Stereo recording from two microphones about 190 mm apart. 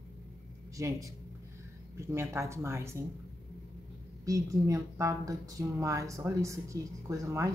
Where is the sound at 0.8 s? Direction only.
15° right (ahead or behind).